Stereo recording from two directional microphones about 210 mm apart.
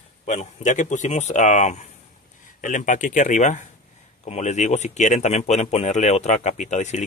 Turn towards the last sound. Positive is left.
turn(degrees=35)  # may be behind; listen again after turning